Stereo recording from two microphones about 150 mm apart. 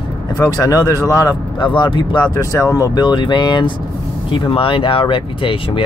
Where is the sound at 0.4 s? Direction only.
20° left (ahead or behind).